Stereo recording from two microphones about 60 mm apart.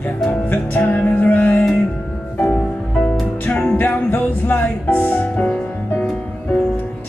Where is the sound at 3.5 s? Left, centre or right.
Left.